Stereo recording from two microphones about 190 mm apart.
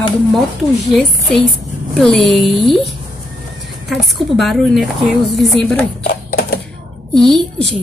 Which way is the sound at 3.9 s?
Centre (ahead or behind).